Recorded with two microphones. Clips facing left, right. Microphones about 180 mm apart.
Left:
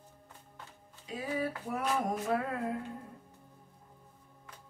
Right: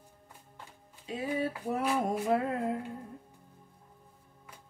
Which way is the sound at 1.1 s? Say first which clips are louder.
Right 2 dB; 25° right (ahead or behind).